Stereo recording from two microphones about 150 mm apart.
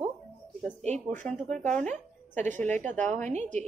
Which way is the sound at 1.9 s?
55° right (ahead or behind).